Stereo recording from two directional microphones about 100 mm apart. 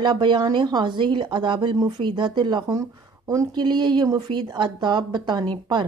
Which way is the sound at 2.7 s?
35° right (ahead or behind).